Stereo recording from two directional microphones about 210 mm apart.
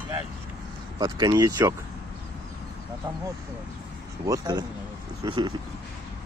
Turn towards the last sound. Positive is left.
turn(degrees=-20)  # may be behind; listen again after turning